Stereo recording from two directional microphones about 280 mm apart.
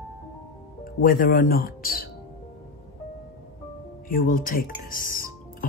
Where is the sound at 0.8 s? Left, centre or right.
Left.